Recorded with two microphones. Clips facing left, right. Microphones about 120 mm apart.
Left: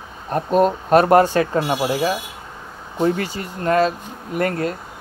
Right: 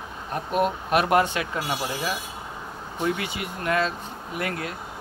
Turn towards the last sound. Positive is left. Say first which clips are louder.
# left 8 dB
turn(degrees=45)  # may be behind; listen again after turning